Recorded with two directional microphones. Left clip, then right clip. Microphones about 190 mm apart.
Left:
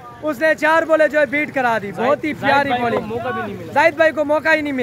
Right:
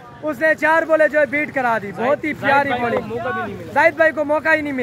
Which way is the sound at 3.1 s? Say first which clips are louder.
Even; 45° left (ahead or behind).